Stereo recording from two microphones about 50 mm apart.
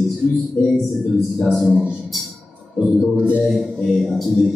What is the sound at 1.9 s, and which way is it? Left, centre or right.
Music, centre.